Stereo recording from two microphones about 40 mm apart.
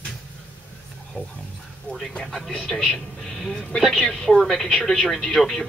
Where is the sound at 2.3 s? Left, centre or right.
Centre.